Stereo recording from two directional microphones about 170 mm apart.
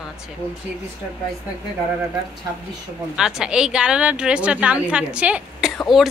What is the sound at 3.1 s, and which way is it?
A woman's voice, 5° right (ahead or behind).